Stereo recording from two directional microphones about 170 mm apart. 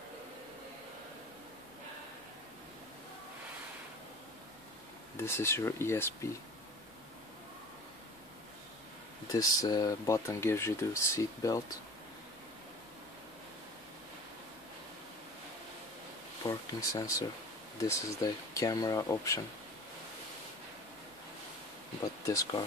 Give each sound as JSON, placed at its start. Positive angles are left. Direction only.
{"t": 5.1, "sound": "speech", "side_deg": 15}
{"t": 9.3, "sound": "speech", "side_deg": 20}
{"t": 16.4, "sound": "speech", "side_deg": 20}
{"t": 22.2, "sound": "speech", "side_deg": 20}